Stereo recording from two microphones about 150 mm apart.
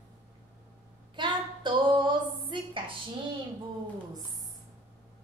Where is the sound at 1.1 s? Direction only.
30° right (ahead or behind).